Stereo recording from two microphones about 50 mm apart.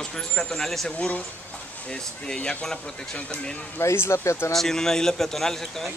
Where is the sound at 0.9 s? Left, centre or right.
Left.